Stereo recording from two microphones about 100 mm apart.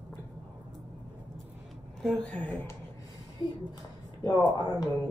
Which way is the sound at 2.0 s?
5° left (ahead or behind).